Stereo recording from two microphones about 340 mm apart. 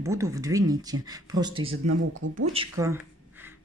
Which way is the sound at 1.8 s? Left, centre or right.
Right.